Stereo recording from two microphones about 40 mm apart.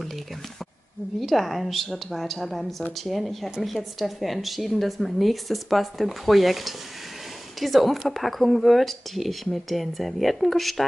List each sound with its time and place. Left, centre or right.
1.2 s a woman's voice: centre